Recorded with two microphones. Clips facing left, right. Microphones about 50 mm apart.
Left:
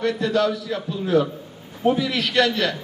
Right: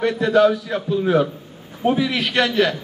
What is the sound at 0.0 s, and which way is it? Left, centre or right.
Speech, right.